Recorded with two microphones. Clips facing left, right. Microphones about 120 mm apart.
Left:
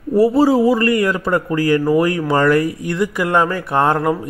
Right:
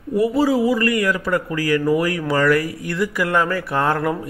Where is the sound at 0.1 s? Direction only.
30° left (ahead or behind).